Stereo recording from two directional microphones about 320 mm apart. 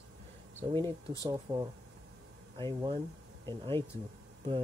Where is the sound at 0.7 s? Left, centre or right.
Centre.